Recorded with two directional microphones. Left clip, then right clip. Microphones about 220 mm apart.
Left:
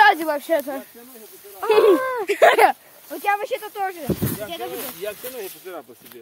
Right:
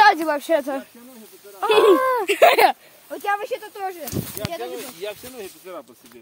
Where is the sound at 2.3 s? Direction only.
25° right (ahead or behind).